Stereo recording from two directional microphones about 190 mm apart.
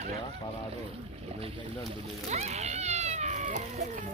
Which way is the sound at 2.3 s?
35° right (ahead or behind).